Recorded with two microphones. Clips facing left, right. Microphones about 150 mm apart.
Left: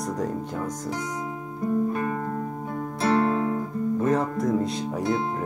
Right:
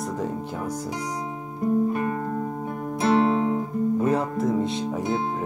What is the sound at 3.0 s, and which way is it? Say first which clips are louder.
Music: right 2 dB; 20° right (ahead or behind).